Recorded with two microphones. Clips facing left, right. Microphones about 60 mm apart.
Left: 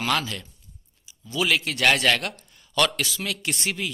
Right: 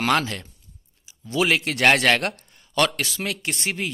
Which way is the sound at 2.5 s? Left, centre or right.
Right.